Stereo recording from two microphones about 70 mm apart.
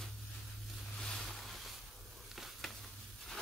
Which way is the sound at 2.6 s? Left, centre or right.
Centre.